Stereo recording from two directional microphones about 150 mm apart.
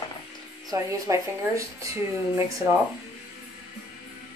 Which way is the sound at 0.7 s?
20° right (ahead or behind).